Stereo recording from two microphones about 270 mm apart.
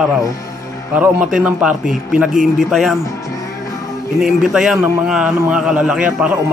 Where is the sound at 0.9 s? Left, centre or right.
Centre.